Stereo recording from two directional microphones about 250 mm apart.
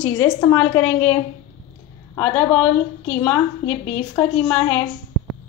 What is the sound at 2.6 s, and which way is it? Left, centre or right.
A woman's voice, left.